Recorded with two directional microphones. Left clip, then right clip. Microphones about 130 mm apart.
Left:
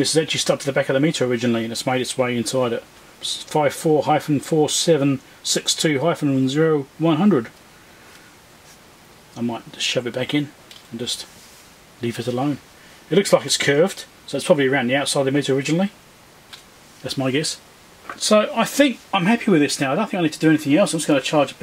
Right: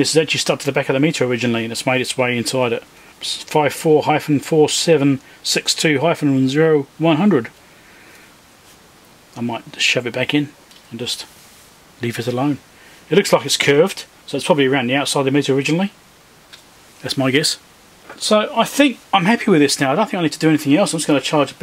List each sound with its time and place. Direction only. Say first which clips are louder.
0.0 s speech: right 4 dB; 20° right (ahead or behind)
9.5 s speech: right 7 dB; 20° right (ahead or behind)
17.0 s speech: right 5 dB; 30° right (ahead or behind)
18.2 s speech: right 2 dB; 15° right (ahead or behind)
19.0 s speech: right 4 dB; 40° right (ahead or behind)